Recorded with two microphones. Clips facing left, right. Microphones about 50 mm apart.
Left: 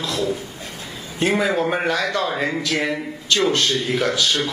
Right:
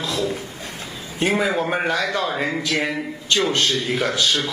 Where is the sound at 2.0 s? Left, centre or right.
Right.